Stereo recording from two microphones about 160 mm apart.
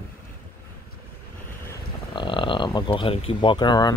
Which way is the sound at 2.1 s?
30° left (ahead or behind).